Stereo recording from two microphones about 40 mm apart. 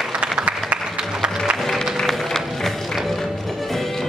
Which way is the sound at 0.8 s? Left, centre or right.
Centre.